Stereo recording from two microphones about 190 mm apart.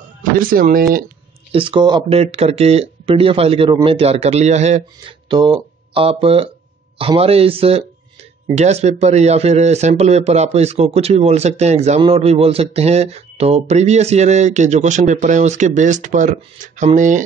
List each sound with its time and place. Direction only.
0.4 s speech: 45° right (ahead or behind)
1.5 s speech: 25° right (ahead or behind)